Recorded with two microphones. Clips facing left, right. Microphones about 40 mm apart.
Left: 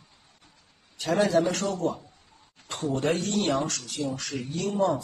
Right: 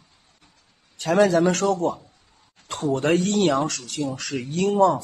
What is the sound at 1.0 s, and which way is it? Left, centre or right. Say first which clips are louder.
Speech: right 5 dB; right.